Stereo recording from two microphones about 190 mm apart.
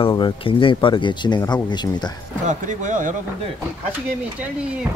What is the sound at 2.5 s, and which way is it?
Speech, 40° right (ahead or behind).